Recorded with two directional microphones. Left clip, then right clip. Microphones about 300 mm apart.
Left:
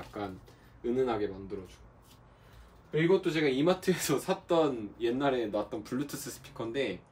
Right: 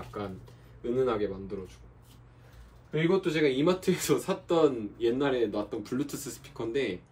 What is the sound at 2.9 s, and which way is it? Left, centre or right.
Speech, centre.